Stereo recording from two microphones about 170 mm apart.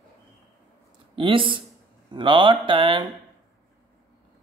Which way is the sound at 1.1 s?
30° right (ahead or behind).